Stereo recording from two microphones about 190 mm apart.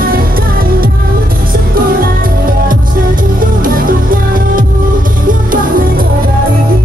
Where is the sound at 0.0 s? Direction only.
50° right (ahead or behind).